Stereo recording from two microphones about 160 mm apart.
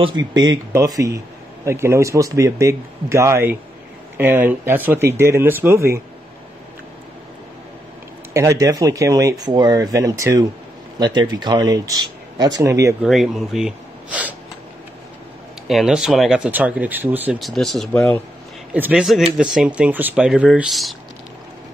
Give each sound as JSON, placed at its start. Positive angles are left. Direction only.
{"t": 0.0, "sound": "a man's voice", "side_deg": -25}
{"t": 8.3, "sound": "a man's voice", "side_deg": -20}
{"t": 13.0, "sound": "speech", "side_deg": 0}
{"t": 15.6, "sound": "speech", "side_deg": 0}
{"t": 17.4, "sound": "speech", "side_deg": 0}
{"t": 18.7, "sound": "speech", "side_deg": -10}